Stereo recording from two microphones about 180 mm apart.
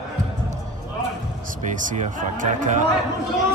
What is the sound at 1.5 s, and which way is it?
Speech, 45° right (ahead or behind).